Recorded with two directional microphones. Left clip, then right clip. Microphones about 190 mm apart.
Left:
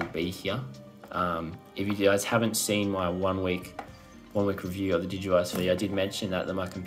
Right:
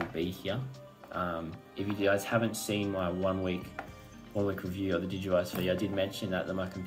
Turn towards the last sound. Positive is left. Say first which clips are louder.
# left 3 dB
turn(degrees=20)  # may be behind; listen again after turning